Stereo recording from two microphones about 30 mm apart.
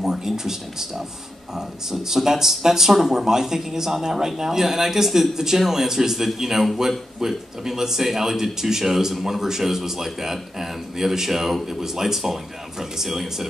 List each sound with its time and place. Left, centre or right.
0.0 s speech: centre